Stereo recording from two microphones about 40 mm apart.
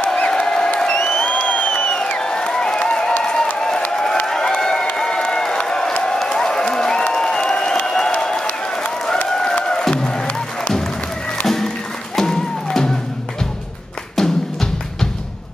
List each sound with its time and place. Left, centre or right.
0.1 s a sound: left
0.8 s applause: left
2.2 s applause: centre
3.9 s a sound: centre
7.2 s applause: centre
9.3 s a sound: centre
9.7 s music: centre
11.4 s music: centre
14.1 s music: centre